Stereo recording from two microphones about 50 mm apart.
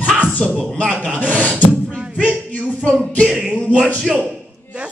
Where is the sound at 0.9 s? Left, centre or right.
Right.